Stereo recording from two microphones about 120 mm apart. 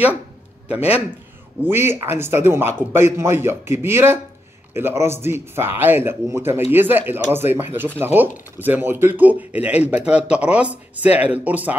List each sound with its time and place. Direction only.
0.7 s a man's voice: 10° right (ahead or behind)